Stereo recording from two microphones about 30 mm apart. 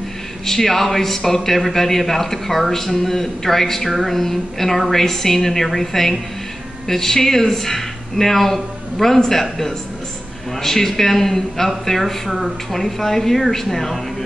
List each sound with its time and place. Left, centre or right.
0.5 s a man's voice: centre
12.3 s speech: centre
12.7 s a man's voice: centre